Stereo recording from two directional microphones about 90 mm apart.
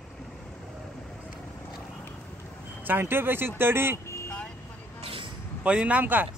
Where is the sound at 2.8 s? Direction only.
25° right (ahead or behind).